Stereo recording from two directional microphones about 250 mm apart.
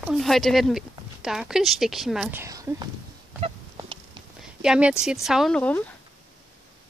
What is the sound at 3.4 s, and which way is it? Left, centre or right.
Chicken, centre.